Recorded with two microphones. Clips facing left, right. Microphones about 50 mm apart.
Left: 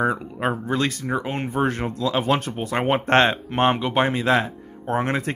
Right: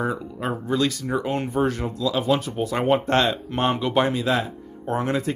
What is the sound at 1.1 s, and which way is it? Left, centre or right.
Speech, left.